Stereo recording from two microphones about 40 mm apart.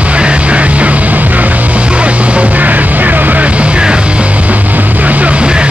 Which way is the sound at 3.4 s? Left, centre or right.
Right.